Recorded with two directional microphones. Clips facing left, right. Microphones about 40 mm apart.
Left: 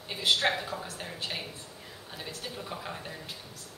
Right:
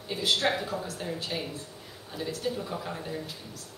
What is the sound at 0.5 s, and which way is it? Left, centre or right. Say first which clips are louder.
Speech: right 3 dB; centre.